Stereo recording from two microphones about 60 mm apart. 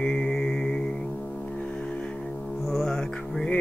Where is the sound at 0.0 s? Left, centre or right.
Centre.